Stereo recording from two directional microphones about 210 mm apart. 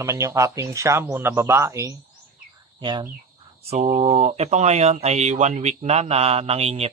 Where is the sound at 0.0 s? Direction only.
15° right (ahead or behind).